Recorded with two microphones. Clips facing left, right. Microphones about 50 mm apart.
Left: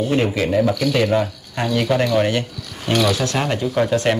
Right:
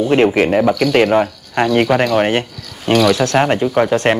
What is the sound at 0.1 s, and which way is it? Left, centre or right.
Speech, right.